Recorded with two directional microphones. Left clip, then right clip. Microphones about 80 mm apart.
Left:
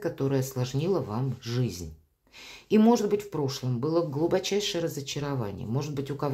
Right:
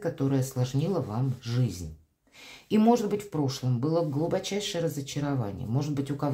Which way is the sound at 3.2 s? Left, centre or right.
Centre.